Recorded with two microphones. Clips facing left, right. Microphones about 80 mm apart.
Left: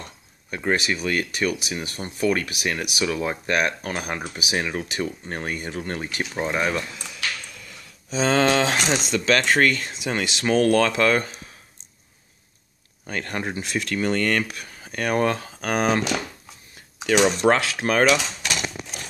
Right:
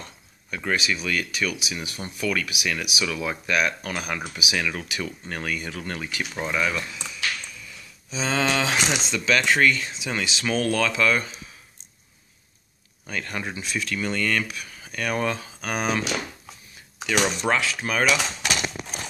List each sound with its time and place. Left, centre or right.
0.0 s speech: left
7.1 s a sound: left
8.1 s speech: left
13.0 s speech: left
17.4 s speech: left